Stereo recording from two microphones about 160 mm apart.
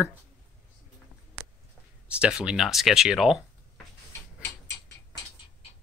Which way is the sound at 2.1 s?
5° right (ahead or behind).